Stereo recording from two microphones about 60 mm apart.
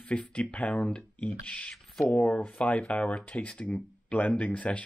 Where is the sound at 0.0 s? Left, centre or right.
Left.